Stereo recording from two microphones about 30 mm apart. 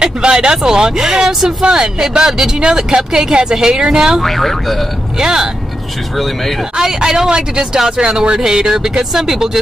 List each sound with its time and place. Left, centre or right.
0.0 s speech: right
4.2 s speech: centre
6.8 s speech: right